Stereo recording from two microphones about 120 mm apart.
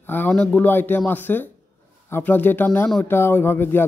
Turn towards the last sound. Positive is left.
turn(degrees=20)  # may be behind; listen again after turning